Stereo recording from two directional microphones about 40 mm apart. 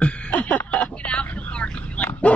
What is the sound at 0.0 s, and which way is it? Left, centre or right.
Vehicle, left.